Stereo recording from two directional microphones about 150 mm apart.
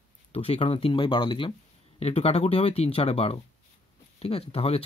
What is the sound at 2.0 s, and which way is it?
Speech, 45° left (ahead or behind).